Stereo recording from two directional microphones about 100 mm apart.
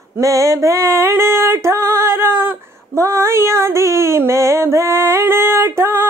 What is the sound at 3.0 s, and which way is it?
Female singing, 25° right (ahead or behind).